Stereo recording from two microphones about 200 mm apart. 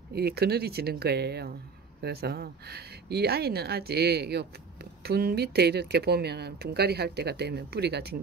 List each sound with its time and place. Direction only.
0.1 s speech: 50° right (ahead or behind)